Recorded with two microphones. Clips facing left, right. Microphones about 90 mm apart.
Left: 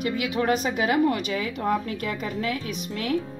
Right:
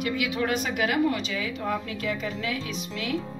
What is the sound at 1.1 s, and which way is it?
Speech, 45° left (ahead or behind).